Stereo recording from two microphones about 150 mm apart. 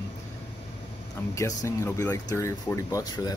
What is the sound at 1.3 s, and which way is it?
Speech, 20° left (ahead or behind).